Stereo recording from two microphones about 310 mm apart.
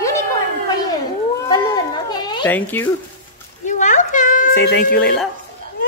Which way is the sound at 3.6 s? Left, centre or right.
Left.